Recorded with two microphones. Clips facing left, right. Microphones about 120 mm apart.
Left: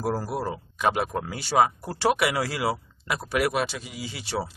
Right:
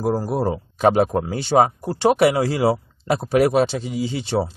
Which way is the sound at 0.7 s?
35° right (ahead or behind).